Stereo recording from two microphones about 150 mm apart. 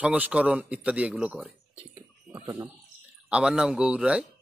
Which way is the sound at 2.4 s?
25° right (ahead or behind).